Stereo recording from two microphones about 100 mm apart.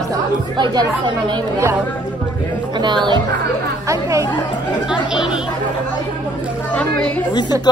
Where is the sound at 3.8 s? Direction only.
35° right (ahead or behind).